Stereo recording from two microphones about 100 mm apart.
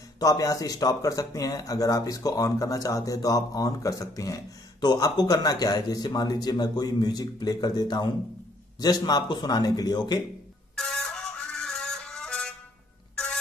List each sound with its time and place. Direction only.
0.2 s speech: 35° left (ahead or behind)
10.8 s music: 5° left (ahead or behind)
13.1 s a sound: 10° left (ahead or behind)